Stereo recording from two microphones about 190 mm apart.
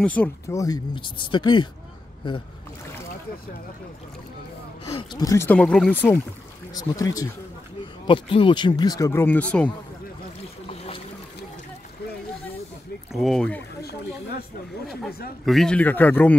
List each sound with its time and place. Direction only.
0.0 s speech: 10° left (ahead or behind); by 1.7 s 25° left (ahead or behind)
4.9 s speech: 20° left (ahead or behind)
13.1 s speech: centre (ahead or behind)
15.0 s speech: 55° left (ahead or behind)
15.4 s speech: centre (ahead or behind)